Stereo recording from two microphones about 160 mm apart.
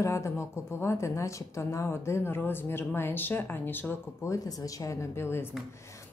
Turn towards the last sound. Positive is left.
turn(degrees=15)  # may be behind; listen again after turning